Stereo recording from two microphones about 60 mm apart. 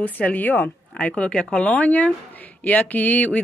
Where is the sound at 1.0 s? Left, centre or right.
Left.